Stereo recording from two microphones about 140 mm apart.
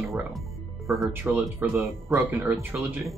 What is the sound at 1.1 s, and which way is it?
Speech, 15° right (ahead or behind).